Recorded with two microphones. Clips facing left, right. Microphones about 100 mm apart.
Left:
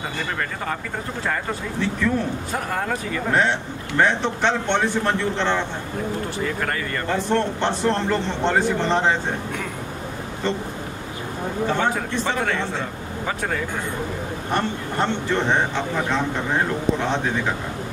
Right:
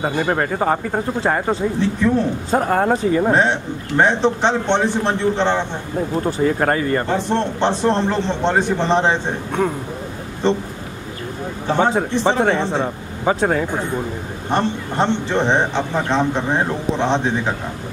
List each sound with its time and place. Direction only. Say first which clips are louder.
0.0 s speech: right 8 dB; 40° right (ahead or behind)
1.5 s a man's voice: right 7 dB; 25° right (ahead or behind)
10.4 s a man's voice: right 7 dB; 20° right (ahead or behind)
11.7 s a man's voice: right 9 dB; 25° right (ahead or behind)
14.5 s a man's voice: right 5 dB; 25° right (ahead or behind)